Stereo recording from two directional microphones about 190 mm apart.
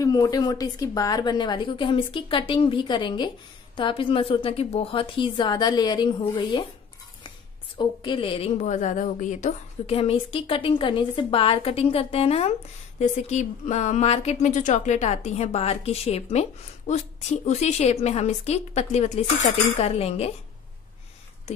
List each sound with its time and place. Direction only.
0.0 s a woman's voice: 20° left (ahead or behind)
7.7 s a woman's voice: 25° left (ahead or behind)